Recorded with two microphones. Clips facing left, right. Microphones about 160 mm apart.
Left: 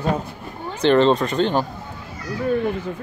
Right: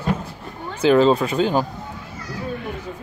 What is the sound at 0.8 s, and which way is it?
Speech, 5° right (ahead or behind).